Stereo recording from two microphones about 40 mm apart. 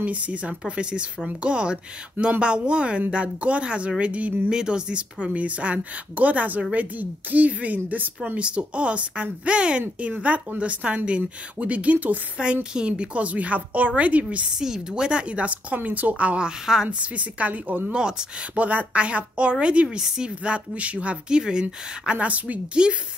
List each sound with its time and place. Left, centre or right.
0.0 s speech: right
4.5 s speech: centre; by 8.1 s right
8.4 s speech: right
12.4 s speech: right
14.6 s speech: centre; by 21.2 s right
21.3 s speech: right
22.2 s speech: right
22.8 s speech: right